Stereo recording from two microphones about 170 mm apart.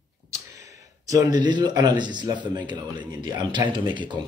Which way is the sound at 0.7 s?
20° right (ahead or behind).